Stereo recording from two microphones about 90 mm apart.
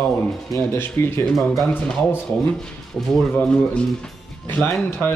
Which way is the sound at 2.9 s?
5° left (ahead or behind).